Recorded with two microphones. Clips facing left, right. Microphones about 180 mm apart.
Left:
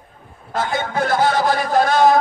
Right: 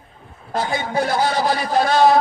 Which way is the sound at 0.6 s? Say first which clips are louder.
Even; 50° left (ahead or behind).